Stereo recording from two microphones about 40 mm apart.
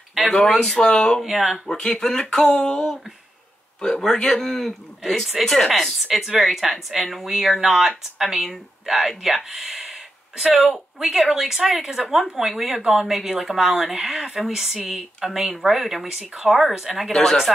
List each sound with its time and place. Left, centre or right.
0.3 s speech: centre
1.2 s speech: centre
1.7 s speech: centre
2.3 s a sound: left
3.8 s speech: centre
5.9 s speech: centre
17.1 s speech: centre